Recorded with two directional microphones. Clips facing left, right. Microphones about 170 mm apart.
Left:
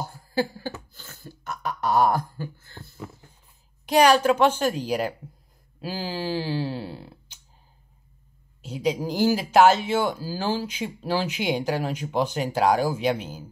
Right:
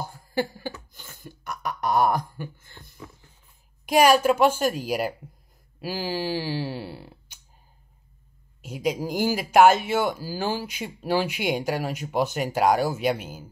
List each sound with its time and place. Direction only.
0.3 s a sound: 15° right (ahead or behind)
2.1 s speech: 20° right (ahead or behind)
8.6 s speech: 10° right (ahead or behind)